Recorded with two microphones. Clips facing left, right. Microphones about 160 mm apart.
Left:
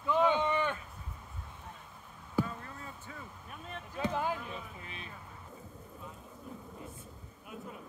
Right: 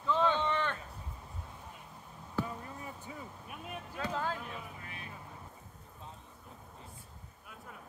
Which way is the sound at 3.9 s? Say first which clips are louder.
Left 3 dB; 15° left (ahead or behind).